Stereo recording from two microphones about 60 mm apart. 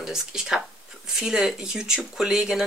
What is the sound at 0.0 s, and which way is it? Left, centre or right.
Speech, centre.